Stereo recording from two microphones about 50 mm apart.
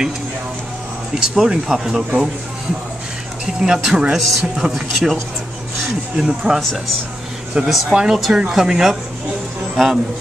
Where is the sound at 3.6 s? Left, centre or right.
Centre.